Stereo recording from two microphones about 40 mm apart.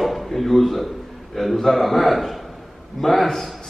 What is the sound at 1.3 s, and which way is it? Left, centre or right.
A man's voice, centre.